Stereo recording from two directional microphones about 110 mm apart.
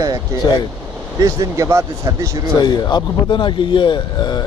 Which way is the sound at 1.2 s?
30° right (ahead or behind).